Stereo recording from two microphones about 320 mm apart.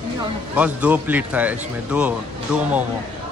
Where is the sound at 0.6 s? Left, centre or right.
Centre.